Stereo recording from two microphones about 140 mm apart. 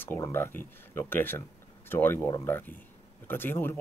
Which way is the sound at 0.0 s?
15° left (ahead or behind).